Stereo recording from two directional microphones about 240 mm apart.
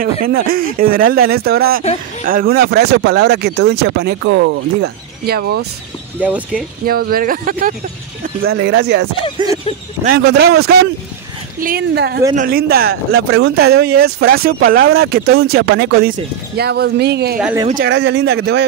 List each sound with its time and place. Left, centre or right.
0.0 s speech: right
6.2 s speech: centre
6.9 s speech: right
9.4 s a sound: centre
10.0 s speech: right